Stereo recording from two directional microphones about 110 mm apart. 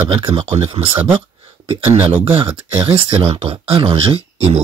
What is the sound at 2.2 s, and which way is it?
Speech, 60° right (ahead or behind).